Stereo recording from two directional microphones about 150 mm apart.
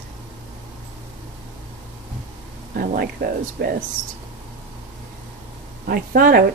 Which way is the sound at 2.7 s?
85° right.